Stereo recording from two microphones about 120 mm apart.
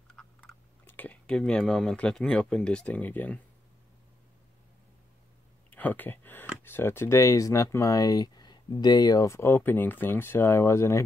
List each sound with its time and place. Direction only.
0.1 s typing: 5° left (ahead or behind)
0.8 s speech: 15° left (ahead or behind)
5.7 s speech: 15° left (ahead or behind)